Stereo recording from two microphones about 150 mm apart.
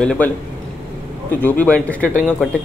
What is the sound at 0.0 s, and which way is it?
Speech, 5° left (ahead or behind).